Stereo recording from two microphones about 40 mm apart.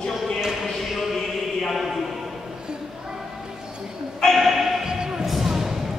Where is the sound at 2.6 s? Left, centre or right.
Right.